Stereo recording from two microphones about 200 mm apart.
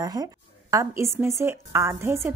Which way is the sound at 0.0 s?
20° right (ahead or behind).